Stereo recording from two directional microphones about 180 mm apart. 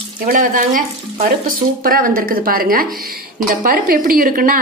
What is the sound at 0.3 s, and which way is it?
A woman's voice, 50° right (ahead or behind).